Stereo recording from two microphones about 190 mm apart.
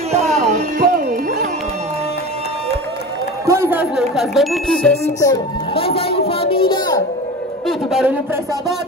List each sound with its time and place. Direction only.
0.1 s music: 35° right (ahead or behind)
3.4 s a sound: 15° right (ahead or behind)
3.9 s speech: centre (ahead or behind)
5.2 s a woman's voice: 15° left (ahead or behind)
5.9 s a sound: 30° left (ahead or behind)
7.6 s a man's voice: 5° right (ahead or behind)